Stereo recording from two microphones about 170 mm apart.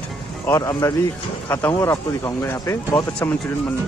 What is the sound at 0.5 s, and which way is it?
Speech, 20° left (ahead or behind).